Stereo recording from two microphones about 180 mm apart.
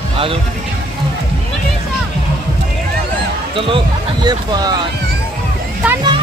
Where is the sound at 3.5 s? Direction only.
30° right (ahead or behind).